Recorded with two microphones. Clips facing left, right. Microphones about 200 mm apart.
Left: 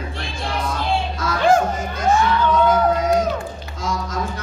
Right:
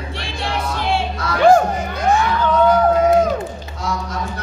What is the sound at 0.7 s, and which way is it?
Music, 70° right (ahead or behind).